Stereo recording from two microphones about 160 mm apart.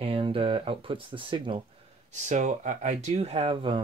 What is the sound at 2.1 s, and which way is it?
Speech, 50° right (ahead or behind).